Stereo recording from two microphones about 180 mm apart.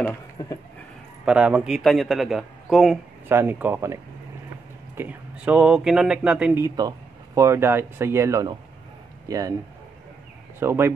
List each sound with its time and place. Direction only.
0.4 s dog: 25° left (ahead or behind)
1.2 s a man's voice: 5° right (ahead or behind)
3.3 s a man's voice: 10° right (ahead or behind)
10.6 s speech: 15° right (ahead or behind)